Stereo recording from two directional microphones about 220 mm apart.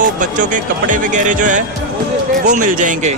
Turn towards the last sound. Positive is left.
turn(degrees=-35)  # may be behind; listen again after turning